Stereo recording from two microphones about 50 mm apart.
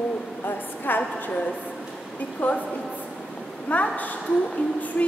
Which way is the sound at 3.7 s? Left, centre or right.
Left.